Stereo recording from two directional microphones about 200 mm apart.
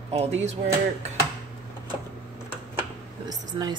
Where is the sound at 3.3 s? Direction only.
20° right (ahead or behind).